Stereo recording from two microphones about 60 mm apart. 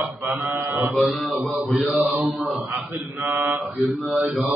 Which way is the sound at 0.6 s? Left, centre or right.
Right.